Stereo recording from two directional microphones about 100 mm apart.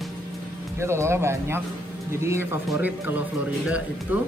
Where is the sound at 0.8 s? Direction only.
25° right (ahead or behind).